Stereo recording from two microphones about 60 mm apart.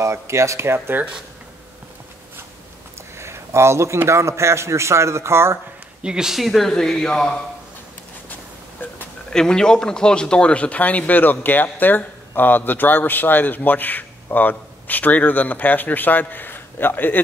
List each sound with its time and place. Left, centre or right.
0.0 s a man's voice: right
0.7 s speech: right
3.2 s a man's voice: right
6.0 s speech: centre
9.3 s speech: centre; by 17.2 s left